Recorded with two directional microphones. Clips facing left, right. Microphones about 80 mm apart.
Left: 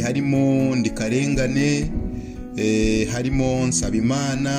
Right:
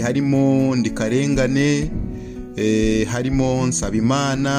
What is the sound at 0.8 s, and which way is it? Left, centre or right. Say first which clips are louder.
Music: right 2 dB; right.